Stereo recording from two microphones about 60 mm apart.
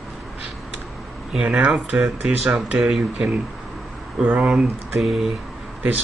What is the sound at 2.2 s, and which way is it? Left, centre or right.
Speech, centre.